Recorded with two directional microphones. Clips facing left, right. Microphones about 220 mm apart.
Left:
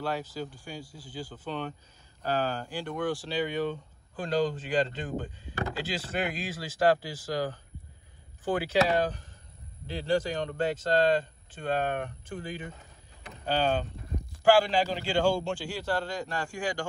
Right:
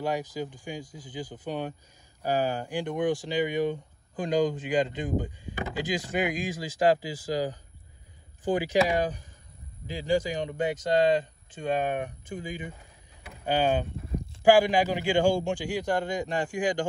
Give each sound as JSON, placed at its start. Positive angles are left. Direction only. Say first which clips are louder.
{"t": 0.0, "sound": "speech", "louder": "right 3 dB", "side_deg": -15}
{"t": 8.5, "sound": "speech", "louder": "right 1 dB", "side_deg": -15}